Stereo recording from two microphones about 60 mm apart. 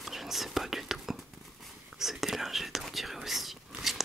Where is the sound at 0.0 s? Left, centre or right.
Centre.